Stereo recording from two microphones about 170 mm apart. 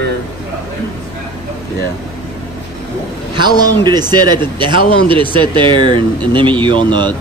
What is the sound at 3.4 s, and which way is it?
A man's voice, 25° right (ahead or behind).